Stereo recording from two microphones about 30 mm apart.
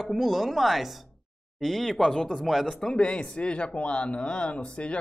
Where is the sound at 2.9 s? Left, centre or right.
Left.